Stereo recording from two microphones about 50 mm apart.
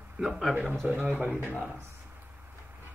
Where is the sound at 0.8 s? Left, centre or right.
Right.